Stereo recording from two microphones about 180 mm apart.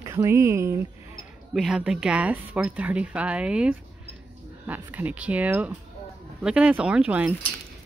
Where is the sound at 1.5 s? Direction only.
Centre (ahead or behind).